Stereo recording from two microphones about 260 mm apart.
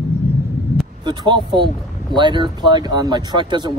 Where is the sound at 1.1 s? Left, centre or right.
Centre.